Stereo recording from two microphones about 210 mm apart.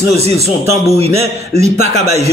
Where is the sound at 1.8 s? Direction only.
30° right (ahead or behind).